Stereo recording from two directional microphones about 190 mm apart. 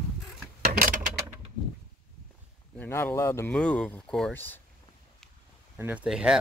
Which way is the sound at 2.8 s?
10° left (ahead or behind).